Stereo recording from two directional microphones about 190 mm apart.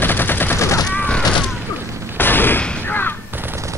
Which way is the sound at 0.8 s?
5° left (ahead or behind).